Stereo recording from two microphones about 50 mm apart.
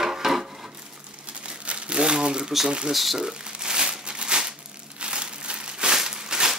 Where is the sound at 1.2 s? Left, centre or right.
Right.